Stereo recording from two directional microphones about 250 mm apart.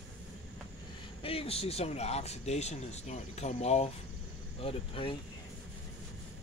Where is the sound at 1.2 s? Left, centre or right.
Left.